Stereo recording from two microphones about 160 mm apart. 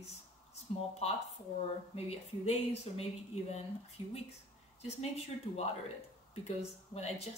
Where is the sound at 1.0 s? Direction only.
40° left (ahead or behind).